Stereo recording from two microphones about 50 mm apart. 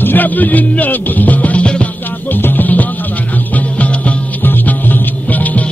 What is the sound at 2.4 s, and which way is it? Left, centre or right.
Music, left.